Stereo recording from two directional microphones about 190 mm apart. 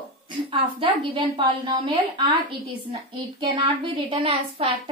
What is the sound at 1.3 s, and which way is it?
A woman's voice, 25° right (ahead or behind).